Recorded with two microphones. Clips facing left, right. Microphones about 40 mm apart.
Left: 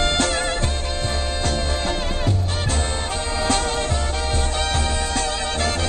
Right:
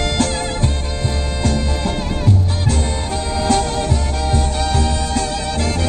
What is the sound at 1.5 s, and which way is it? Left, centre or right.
Music, left.